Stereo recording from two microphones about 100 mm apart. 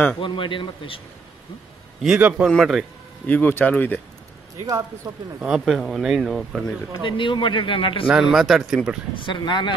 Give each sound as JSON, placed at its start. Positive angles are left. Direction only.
{"t": 0.2, "sound": "a man's voice", "side_deg": 55}
{"t": 2.0, "sound": "a man's voice", "side_deg": -10}
{"t": 3.3, "sound": "speech", "side_deg": 20}
{"t": 5.4, "sound": "speech", "side_deg": 0}
{"t": 7.1, "sound": "a man's voice", "side_deg": 55}
{"t": 8.1, "sound": "speech", "side_deg": -5}
{"t": 9.2, "sound": "speech", "side_deg": 50}